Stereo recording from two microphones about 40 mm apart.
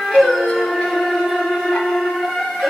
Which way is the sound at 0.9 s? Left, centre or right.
Centre.